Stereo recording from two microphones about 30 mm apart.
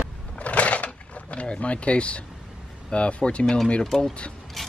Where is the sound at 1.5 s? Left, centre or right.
Left.